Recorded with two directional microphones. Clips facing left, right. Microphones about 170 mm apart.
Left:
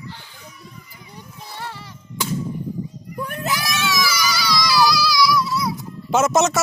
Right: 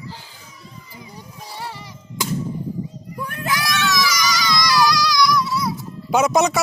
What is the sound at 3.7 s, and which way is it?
Baby cry, 5° left (ahead or behind).